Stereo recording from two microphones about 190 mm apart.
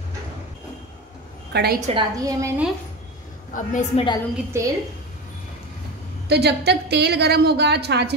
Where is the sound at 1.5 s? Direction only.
60° right (ahead or behind).